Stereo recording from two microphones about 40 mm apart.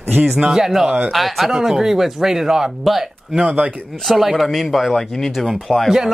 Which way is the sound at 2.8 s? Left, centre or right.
Centre.